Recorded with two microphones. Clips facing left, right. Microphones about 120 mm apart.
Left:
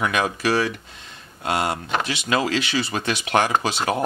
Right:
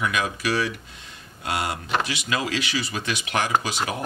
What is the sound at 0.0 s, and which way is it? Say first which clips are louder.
Speech: left 3 dB; 30° left (ahead or behind).